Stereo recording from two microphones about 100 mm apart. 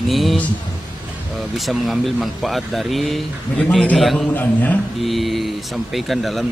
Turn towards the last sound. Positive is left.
turn(degrees=0)  # may be behind; listen again after turning